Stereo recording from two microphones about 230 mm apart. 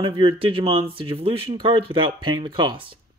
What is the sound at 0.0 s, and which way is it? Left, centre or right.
Speech, right.